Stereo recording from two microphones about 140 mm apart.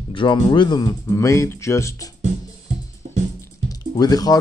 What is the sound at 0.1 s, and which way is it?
Speech, 35° left (ahead or behind).